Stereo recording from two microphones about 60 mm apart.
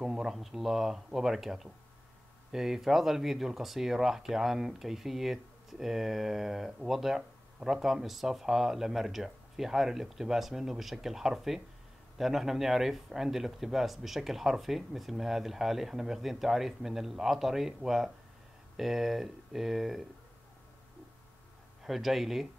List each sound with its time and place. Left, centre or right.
0.0 s speech: centre
21.8 s speech: centre